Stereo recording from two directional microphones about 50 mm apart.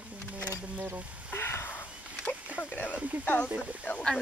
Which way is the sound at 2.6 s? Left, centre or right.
Left.